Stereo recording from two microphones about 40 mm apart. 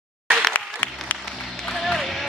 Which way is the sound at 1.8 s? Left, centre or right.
Centre.